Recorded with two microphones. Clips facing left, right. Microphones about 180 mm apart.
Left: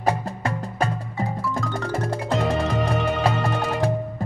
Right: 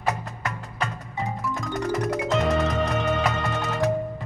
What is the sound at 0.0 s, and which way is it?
Music, 30° left (ahead or behind).